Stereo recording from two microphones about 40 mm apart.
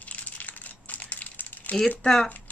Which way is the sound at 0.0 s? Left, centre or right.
Left.